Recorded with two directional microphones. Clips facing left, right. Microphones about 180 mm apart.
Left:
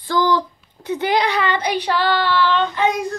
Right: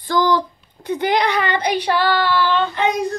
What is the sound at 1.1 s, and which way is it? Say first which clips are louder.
Speech: even; 55° right (ahead or behind).